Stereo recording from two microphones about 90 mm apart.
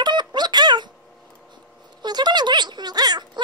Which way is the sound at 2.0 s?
55° right (ahead or behind).